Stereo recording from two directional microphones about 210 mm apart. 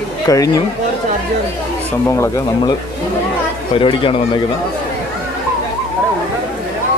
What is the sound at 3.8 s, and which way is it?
Speech, 25° left (ahead or behind).